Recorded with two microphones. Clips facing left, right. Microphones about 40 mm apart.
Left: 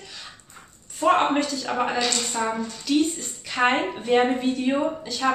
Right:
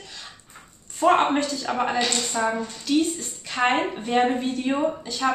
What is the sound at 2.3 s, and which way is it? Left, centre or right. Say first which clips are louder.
A woman's voice: right 1 dB; centre.